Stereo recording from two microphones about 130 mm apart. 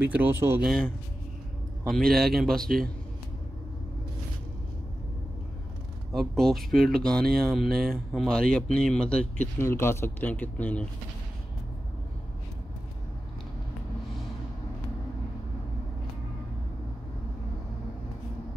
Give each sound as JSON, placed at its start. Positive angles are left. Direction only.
{"t": 0.0, "sound": "speech", "side_deg": -15}
{"t": 0.6, "sound": "speech", "side_deg": 0}
{"t": 6.1, "sound": "speech", "side_deg": 0}
{"t": 9.6, "sound": "speech", "side_deg": 20}